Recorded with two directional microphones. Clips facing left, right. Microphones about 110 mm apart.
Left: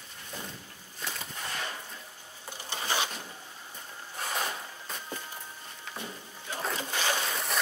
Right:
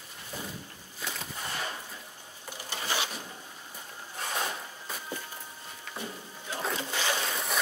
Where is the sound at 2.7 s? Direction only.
20° left (ahead or behind).